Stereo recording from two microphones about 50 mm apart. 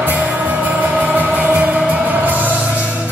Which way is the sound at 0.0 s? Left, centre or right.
Right.